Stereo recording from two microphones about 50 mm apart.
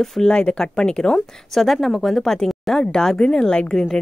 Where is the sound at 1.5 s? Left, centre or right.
Centre.